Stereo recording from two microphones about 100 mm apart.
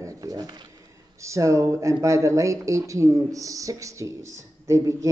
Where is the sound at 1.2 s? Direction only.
30° right (ahead or behind).